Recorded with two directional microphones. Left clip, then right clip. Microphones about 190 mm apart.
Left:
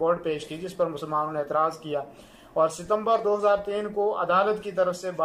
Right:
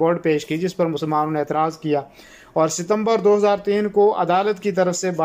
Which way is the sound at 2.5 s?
25° right (ahead or behind).